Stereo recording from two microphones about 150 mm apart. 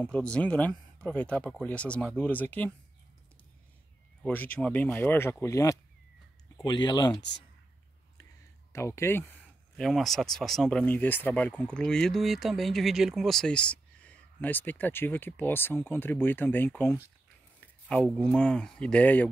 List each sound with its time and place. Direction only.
0.0 s speech: 5° left (ahead or behind)
4.2 s speech: 10° left (ahead or behind); by 7.2 s 30° left (ahead or behind)
8.7 s a sound: 20° left (ahead or behind)
9.8 s speech: centre (ahead or behind)
17.8 s speech: 5° left (ahead or behind)